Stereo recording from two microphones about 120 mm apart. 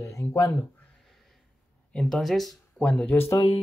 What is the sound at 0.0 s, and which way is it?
Speech, 25° left (ahead or behind).